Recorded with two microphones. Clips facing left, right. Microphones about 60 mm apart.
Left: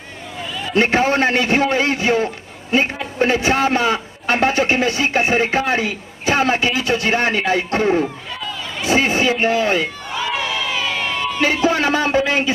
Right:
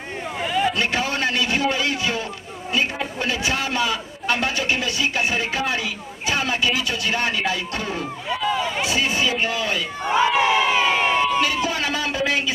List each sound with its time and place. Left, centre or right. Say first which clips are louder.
0.4 s vehicle: right 6 dB; right
0.7 s a man's voice: left 8 dB; left
8.5 s a sound: right 7 dB; right
8.8 s a man's voice: left 10 dB; left
10.0 s crowd: right 5 dB; right
11.4 s a sound: left 6 dB; left